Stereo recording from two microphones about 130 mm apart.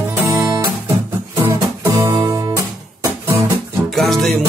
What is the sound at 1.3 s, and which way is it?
Music, 20° right (ahead or behind).